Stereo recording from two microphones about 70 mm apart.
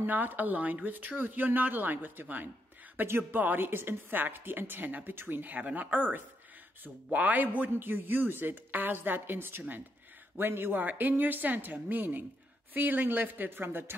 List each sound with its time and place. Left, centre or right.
0.0 s a woman's voice: right